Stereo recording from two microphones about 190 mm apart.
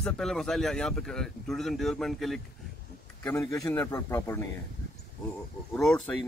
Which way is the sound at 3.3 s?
15° left (ahead or behind).